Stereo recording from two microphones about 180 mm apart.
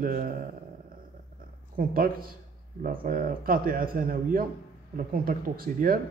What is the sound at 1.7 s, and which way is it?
A man's voice, 50° right (ahead or behind).